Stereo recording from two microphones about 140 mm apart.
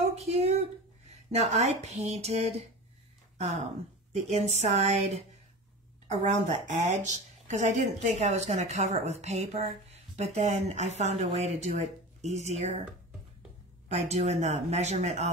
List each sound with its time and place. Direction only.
0.1 s a sound: 50° right (ahead or behind)
3.3 s speech: 50° right (ahead or behind)
13.8 s speech: 50° right (ahead or behind)